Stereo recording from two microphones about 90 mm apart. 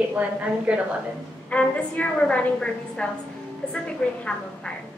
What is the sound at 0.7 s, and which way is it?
Speech, 15° right (ahead or behind).